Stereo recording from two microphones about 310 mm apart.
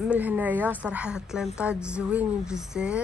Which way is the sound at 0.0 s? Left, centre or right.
Centre.